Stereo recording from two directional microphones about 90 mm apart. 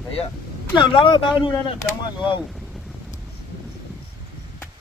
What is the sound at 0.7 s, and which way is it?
Speech, 70° left (ahead or behind).